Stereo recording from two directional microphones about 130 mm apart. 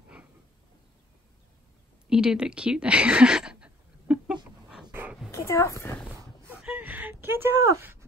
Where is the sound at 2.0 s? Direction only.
5° right (ahead or behind).